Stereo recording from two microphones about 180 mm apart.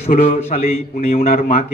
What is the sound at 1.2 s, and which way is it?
Speech, 55° left (ahead or behind).